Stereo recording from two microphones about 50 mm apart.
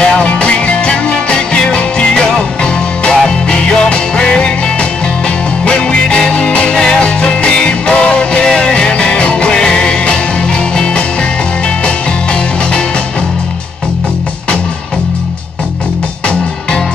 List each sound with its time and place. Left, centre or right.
0.0 s music: centre
5.7 s music: centre